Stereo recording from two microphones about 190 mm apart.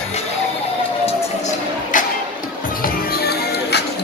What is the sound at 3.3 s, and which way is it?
Music, 60° left (ahead or behind).